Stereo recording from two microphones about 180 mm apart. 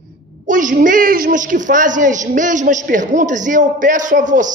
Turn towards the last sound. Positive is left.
turn(degrees=-45)  # may be behind; listen again after turning